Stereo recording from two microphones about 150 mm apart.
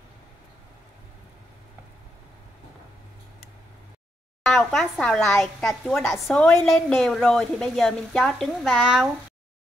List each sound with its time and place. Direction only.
4.4 s a woman's voice: 5° left (ahead or behind)